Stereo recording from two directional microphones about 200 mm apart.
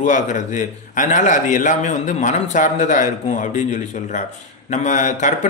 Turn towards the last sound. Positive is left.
turn(degrees=40)  # may be behind; listen again after turning